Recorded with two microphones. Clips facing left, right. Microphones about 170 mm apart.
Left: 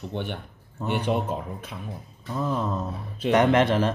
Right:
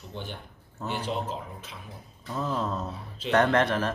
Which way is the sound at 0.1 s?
65° left (ahead or behind).